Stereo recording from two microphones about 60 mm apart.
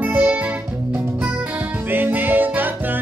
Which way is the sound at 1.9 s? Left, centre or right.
Right.